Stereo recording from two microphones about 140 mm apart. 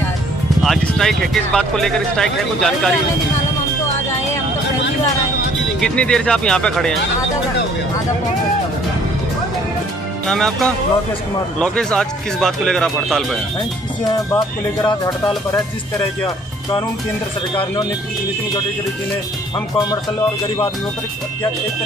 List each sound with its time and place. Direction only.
0.6 s speech: centre (ahead or behind)
5.8 s speech: 5° left (ahead or behind)
10.2 s speech: 5° left (ahead or behind)
14.1 s speech: 30° left (ahead or behind)